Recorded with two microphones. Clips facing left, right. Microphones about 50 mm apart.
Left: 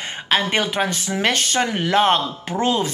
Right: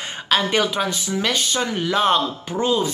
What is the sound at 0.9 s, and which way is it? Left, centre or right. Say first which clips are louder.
Speech: left 2 dB; left.